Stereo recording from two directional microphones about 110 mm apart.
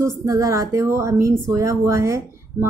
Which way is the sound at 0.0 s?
30° right (ahead or behind).